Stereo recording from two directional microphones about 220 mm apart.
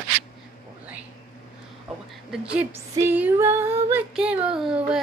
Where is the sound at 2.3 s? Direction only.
5° right (ahead or behind).